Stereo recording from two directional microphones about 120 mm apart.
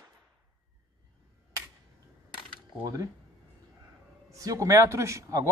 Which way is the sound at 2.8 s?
30° right (ahead or behind).